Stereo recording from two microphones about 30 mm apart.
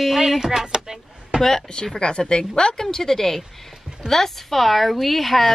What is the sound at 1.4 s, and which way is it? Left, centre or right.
Speech, centre.